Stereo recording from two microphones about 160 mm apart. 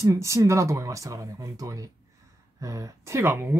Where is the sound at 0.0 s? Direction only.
20° right (ahead or behind).